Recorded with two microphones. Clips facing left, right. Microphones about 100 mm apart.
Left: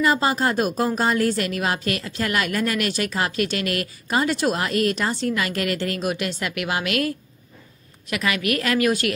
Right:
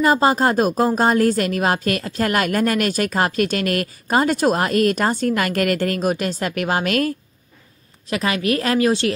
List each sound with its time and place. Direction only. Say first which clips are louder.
0.0 s a woman's voice: right 4 dB; 40° right (ahead or behind)